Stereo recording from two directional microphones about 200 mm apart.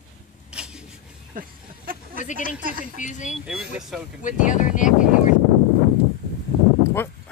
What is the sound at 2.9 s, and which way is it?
Speech, 40° left (ahead or behind).